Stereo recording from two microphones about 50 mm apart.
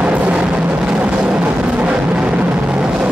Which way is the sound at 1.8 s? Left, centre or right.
Right.